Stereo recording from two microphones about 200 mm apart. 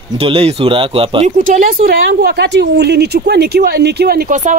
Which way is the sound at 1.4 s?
40° right (ahead or behind).